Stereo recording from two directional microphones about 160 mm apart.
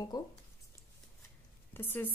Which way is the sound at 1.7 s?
10° left (ahead or behind).